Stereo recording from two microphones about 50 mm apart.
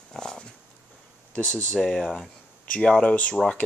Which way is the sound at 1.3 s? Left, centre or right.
Left.